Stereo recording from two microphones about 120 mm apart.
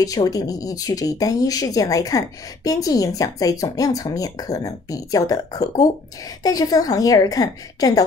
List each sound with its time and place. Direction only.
0.0 s speech: 30° left (ahead or behind)